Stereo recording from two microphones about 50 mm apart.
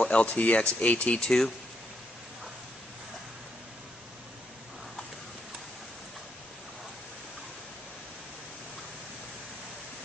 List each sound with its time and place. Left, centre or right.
0.0 s speech: left